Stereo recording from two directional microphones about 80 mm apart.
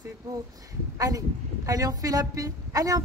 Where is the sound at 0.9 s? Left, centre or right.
Right.